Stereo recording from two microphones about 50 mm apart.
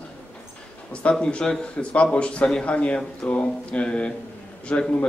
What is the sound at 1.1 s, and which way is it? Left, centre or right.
Speech, centre.